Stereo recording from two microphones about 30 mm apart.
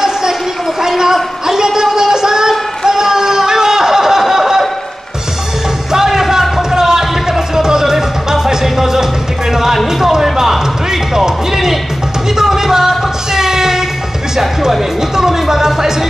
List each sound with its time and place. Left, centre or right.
0.0 s a sound: centre
5.9 s music: centre
9.8 s basketball bounce: centre
12.4 s music: centre
15.1 s music: centre